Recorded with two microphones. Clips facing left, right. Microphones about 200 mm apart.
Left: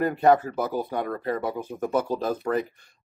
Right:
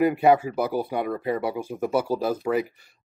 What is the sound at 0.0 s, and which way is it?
Speech, 10° right (ahead or behind).